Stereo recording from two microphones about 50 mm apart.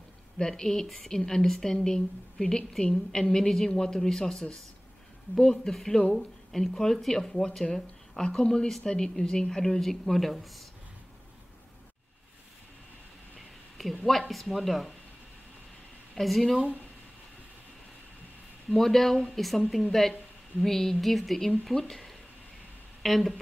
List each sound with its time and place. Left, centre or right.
0.4 s a woman's voice: centre
13.8 s a woman's voice: centre
16.2 s a woman's voice: centre
16.5 s speech: right
18.7 s a woman's voice: centre